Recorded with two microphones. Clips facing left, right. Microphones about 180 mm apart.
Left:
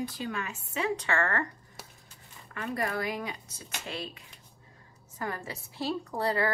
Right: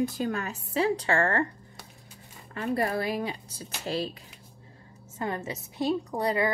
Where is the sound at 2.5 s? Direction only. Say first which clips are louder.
Right 5 dB; 30° right (ahead or behind).